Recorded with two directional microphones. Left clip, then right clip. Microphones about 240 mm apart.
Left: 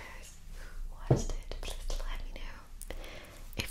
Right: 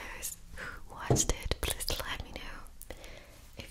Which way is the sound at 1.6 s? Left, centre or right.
Right.